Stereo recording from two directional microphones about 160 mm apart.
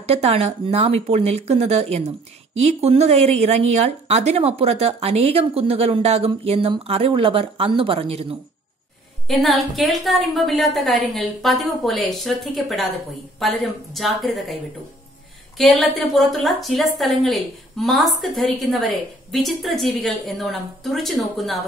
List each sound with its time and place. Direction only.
0.0 s speech: 40° right (ahead or behind)
9.3 s a woman's voice: centre (ahead or behind)